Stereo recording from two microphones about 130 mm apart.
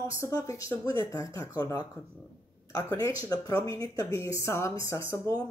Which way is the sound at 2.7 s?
20° left (ahead or behind).